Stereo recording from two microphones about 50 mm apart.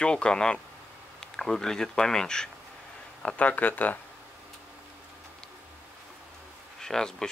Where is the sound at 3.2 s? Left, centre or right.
Left.